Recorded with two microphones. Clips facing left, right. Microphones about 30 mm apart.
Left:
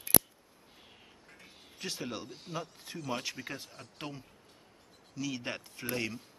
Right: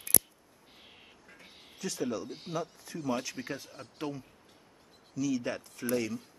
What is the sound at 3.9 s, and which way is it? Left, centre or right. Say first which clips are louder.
Speech: right 6 dB; centre.